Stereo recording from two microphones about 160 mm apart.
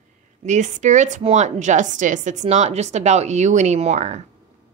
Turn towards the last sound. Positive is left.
turn(degrees=-45)  # may be behind; listen again after turning